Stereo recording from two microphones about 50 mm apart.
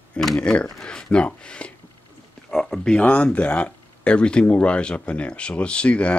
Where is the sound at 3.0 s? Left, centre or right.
Left.